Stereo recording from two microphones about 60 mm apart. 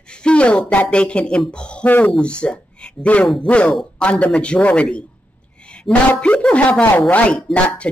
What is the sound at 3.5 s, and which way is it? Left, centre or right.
A man's voice, left.